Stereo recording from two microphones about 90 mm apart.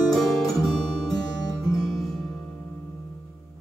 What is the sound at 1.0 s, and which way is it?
Music, 45° left (ahead or behind).